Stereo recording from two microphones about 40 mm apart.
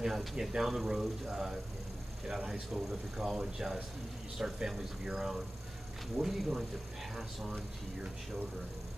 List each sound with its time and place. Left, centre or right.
0.0 s speech: centre